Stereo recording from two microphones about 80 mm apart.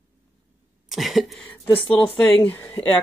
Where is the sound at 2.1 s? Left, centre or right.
Centre.